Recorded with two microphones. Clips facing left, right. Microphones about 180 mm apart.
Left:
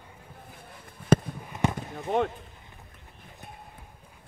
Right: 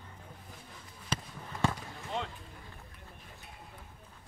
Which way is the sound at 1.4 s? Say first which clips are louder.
Left 4 dB; 20° left (ahead or behind).